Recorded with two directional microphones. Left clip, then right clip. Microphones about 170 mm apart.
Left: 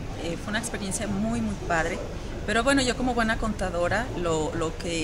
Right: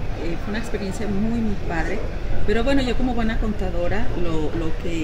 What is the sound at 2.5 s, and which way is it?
Speech, 25° left (ahead or behind).